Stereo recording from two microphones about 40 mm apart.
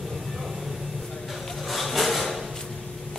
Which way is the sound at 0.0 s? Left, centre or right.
Centre.